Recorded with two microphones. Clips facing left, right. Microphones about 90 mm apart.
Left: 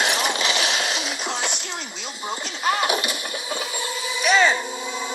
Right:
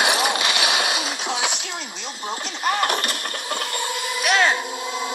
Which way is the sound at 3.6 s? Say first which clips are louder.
Right 2 dB; 65° right (ahead or behind).